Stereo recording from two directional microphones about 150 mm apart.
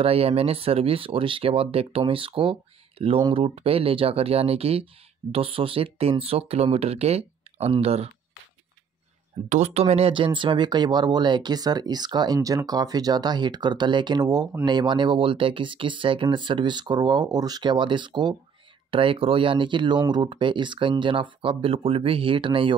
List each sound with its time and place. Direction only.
0.0 s speech: 40° right (ahead or behind)
9.5 s speech: 45° right (ahead or behind)